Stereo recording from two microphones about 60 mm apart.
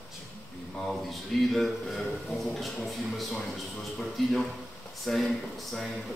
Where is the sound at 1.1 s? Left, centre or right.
Centre.